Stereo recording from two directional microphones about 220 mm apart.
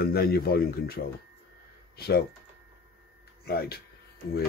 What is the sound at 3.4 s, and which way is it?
Speech, 45° left (ahead or behind).